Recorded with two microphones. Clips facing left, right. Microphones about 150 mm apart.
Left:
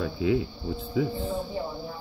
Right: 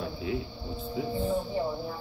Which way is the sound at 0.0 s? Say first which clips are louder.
Left 7 dB; 90° left.